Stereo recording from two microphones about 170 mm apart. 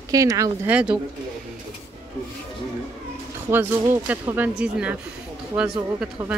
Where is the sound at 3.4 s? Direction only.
15° right (ahead or behind).